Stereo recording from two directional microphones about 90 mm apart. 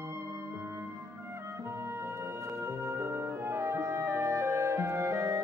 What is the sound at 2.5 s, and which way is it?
Music, 25° right (ahead or behind).